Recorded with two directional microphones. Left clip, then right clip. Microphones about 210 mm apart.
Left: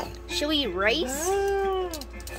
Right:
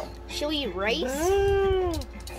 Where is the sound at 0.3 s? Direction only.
15° left (ahead or behind).